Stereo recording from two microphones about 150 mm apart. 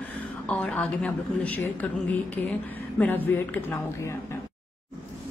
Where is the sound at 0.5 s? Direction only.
10° left (ahead or behind).